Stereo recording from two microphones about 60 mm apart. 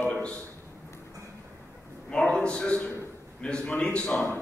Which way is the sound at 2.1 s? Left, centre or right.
Centre.